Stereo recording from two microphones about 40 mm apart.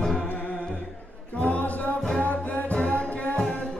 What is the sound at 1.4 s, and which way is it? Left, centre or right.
Music, left.